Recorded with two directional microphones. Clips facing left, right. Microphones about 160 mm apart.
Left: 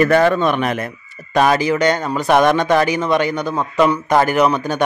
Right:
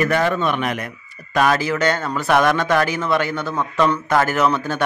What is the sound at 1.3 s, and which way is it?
A man's voice, 20° left (ahead or behind).